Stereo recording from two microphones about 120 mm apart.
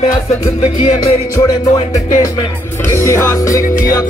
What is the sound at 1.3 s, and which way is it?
Music, 30° left (ahead or behind).